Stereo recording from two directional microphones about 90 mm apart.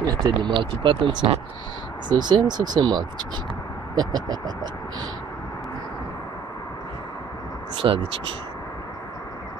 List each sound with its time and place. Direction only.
0.0 s speech: 45° right (ahead or behind)
0.5 s speech: 65° right (ahead or behind)
2.0 s speech: 50° right (ahead or behind)
7.8 s speech: 60° right (ahead or behind)